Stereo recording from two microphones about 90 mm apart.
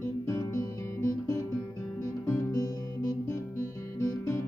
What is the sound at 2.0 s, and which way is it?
Music, 35° left (ahead or behind).